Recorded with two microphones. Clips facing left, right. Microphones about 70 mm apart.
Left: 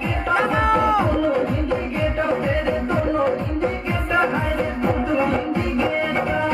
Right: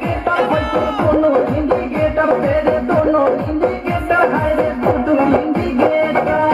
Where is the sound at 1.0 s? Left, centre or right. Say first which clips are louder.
Right 7 dB; right.